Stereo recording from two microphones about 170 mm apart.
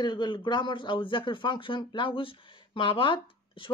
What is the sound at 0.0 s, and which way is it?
Speech, 25° left (ahead or behind).